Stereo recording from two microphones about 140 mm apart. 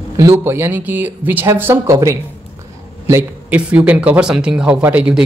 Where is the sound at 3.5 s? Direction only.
10° right (ahead or behind).